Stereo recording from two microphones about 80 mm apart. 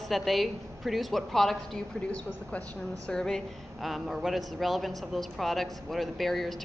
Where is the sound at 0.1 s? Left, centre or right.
Centre.